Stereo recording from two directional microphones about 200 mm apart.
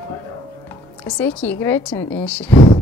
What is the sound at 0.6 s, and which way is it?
Speech, 10° left (ahead or behind).